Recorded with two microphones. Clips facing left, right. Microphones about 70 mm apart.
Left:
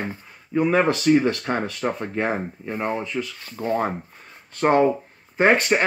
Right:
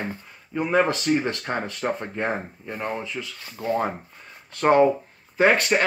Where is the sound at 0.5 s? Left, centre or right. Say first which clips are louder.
Left 3 dB; left.